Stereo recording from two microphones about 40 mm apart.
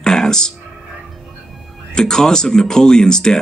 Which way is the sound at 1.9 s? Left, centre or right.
Centre.